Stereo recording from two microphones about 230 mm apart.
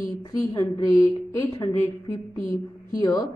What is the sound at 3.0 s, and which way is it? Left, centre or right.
Speech, centre.